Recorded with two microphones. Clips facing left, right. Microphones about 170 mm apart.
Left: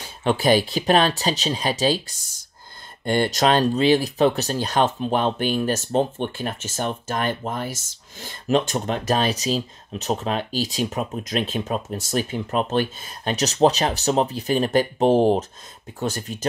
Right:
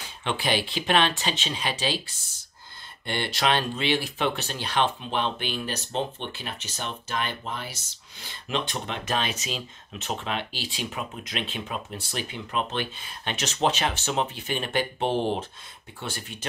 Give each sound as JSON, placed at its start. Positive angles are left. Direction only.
{"t": 0.2, "sound": "speech", "side_deg": 40}
{"t": 3.1, "sound": "speech", "side_deg": 45}